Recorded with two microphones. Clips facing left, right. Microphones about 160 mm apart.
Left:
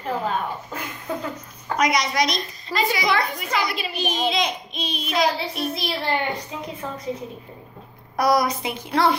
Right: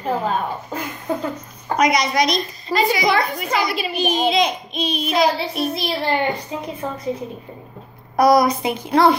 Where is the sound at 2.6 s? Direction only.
30° right (ahead or behind).